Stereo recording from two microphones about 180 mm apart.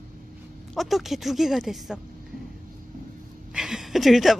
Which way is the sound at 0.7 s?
Centre (ahead or behind).